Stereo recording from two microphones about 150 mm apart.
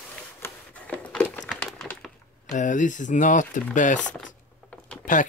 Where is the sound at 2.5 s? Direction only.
60° left (ahead or behind).